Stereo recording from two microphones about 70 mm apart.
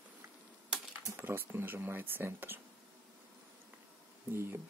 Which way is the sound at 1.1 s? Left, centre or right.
Right.